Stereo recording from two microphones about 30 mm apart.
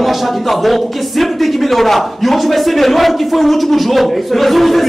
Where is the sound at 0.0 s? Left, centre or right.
Centre.